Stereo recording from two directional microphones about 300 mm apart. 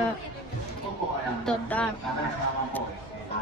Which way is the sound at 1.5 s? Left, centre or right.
Centre.